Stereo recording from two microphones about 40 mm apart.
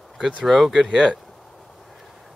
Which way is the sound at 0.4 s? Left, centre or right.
Centre.